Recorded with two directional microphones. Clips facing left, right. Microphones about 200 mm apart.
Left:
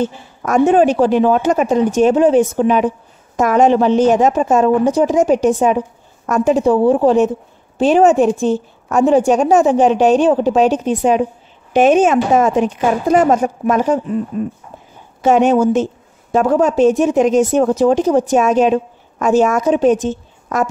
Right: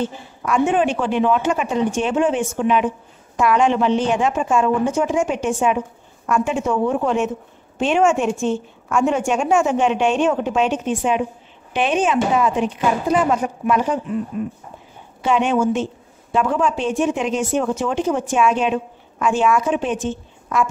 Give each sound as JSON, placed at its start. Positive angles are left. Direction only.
{"t": 0.0, "sound": "a woman's voice", "side_deg": 40}
{"t": 15.2, "sound": "a woman's voice", "side_deg": 40}